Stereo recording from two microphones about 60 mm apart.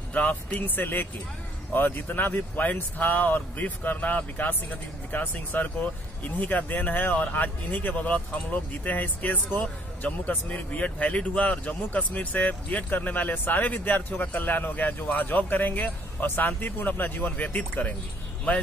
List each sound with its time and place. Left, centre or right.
0.1 s speech: left